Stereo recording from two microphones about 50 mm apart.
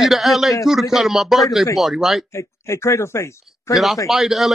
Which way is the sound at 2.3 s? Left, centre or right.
Left.